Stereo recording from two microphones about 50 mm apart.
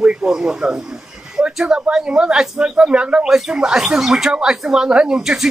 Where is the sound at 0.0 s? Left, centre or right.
Centre.